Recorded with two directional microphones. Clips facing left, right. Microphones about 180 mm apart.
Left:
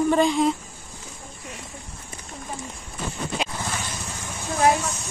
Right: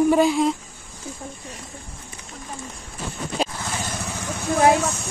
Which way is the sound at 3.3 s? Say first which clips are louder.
Right 2 dB; 35° right (ahead or behind).